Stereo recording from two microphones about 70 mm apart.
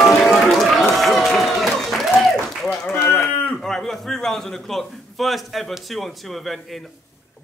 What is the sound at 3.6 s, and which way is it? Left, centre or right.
A man's voice, centre.